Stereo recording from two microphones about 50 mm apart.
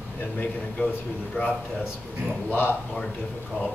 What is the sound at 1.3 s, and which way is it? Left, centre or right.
Speech, left.